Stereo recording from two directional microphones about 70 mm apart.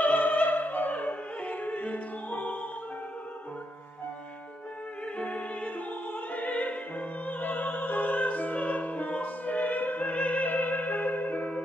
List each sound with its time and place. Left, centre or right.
0.0 s opera: left
5.2 s music: centre